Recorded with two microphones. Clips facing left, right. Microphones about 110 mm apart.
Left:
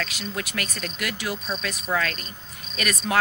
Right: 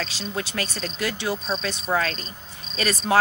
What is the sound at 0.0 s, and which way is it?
Speech, 30° right (ahead or behind).